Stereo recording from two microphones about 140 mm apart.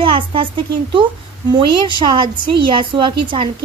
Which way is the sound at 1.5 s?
35° right (ahead or behind).